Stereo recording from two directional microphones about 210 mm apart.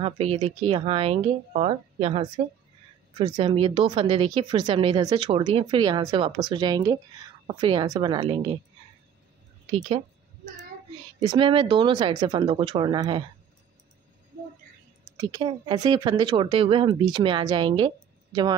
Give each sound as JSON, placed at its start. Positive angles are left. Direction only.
{"t": 0.0, "sound": "speech", "side_deg": -30}
{"t": 11.1, "sound": "speech", "side_deg": -20}
{"t": 15.1, "sound": "speech", "side_deg": -20}